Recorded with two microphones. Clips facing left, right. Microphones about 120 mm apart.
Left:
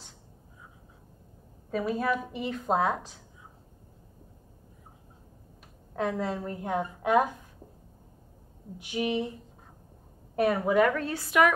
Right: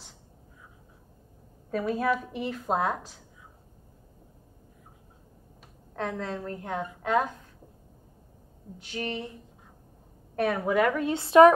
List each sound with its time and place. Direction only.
1.7 s a woman's voice: centre (ahead or behind)
5.9 s a woman's voice: 10° left (ahead or behind)
8.7 s a woman's voice: 15° left (ahead or behind)
10.3 s a woman's voice: 10° left (ahead or behind)
10.9 s a woman's voice: 15° right (ahead or behind)
11.1 s speech: 30° right (ahead or behind)